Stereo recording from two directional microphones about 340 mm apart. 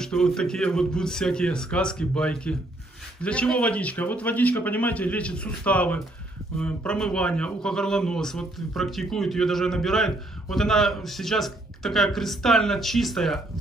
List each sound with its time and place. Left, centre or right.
0.0 s a man's voice: centre